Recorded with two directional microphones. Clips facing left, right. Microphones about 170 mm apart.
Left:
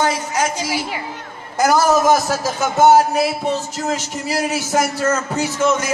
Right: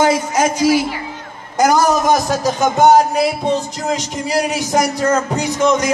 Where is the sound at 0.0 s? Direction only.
15° right (ahead or behind).